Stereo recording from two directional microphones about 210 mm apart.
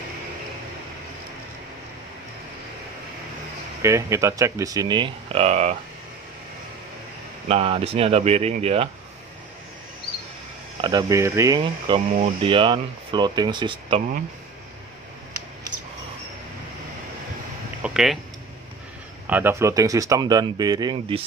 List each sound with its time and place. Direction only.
3.8 s speech: 15° right (ahead or behind); by 5.8 s 30° right (ahead or behind)
7.4 s speech: 25° right (ahead or behind)
10.8 s speech: 20° right (ahead or behind)
17.8 s a sound: centre (ahead or behind)
19.2 s speech: 10° right (ahead or behind)